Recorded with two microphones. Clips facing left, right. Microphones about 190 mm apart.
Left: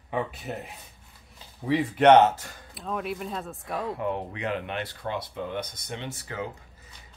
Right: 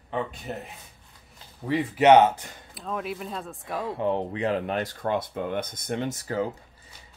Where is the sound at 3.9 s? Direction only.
30° right (ahead or behind).